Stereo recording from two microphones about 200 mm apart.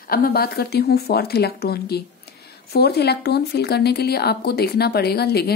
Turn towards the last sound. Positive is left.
turn(degrees=50)  # may be behind; listen again after turning